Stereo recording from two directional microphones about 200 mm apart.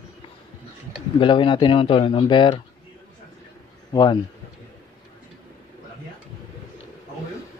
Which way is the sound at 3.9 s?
20° left (ahead or behind).